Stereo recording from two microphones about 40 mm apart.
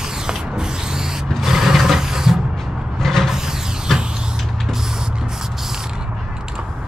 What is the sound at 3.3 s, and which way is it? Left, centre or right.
Vehicle, centre.